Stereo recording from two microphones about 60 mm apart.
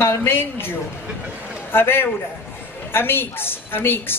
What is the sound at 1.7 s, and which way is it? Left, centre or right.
A man's voice, left.